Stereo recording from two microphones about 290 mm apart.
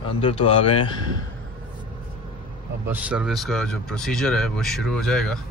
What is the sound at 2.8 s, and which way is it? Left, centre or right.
A man's voice, centre.